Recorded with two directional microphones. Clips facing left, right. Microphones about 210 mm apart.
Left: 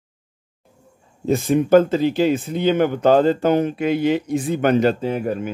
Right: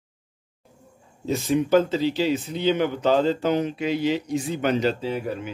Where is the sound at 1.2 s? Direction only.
50° left (ahead or behind).